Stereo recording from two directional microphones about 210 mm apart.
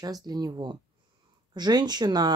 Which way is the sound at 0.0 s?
20° right (ahead or behind).